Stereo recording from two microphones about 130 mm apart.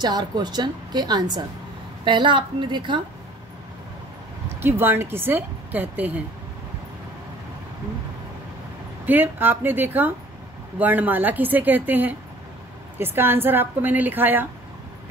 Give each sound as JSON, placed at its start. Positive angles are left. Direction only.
{"t": 0.0, "sound": "a woman's voice", "side_deg": -35}
{"t": 4.6, "sound": "a woman's voice", "side_deg": -20}
{"t": 9.0, "sound": "a woman's voice", "side_deg": -15}